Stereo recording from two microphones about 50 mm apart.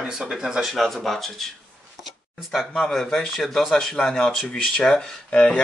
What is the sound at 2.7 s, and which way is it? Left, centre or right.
Speech, centre.